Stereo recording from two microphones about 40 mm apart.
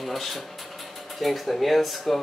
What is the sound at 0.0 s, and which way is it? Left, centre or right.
Speech, centre.